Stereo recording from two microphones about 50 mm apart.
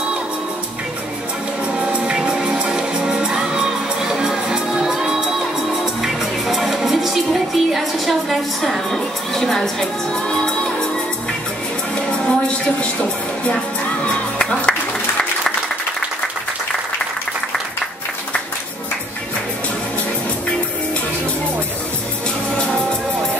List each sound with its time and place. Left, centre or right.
1.9 s music: centre
7.5 s a woman's voice: centre
12.1 s music: centre
14.0 s music: centre